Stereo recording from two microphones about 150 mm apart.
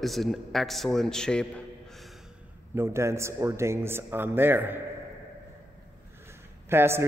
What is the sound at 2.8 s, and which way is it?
A woman's voice, 20° right (ahead or behind).